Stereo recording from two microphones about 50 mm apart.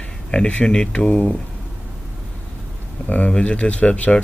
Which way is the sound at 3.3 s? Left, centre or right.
Left.